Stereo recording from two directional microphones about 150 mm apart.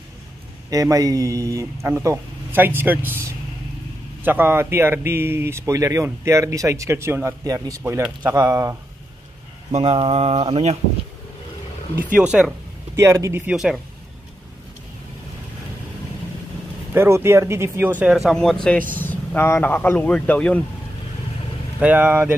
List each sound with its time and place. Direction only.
0.7 s a man's voice: 25° right (ahead or behind)
9.7 s speech: 40° right (ahead or behind)
12.0 s speech: 5° right (ahead or behind)
12.9 s a man's voice: 20° right (ahead or behind)
16.9 s speech: 15° right (ahead or behind); by 20.6 s 10° left (ahead or behind)
21.7 s speech: 10° right (ahead or behind)